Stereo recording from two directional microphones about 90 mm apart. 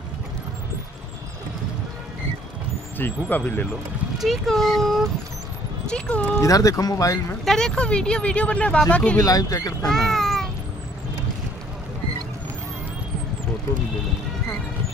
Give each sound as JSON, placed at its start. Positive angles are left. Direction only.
{"t": 3.0, "sound": "speech", "side_deg": 20}
{"t": 4.2, "sound": "speech", "side_deg": 0}
{"t": 6.4, "sound": "speech", "side_deg": 40}
{"t": 7.4, "sound": "speech", "side_deg": 5}
{"t": 9.2, "sound": "speech", "side_deg": 45}
{"t": 9.8, "sound": "a sound", "side_deg": 5}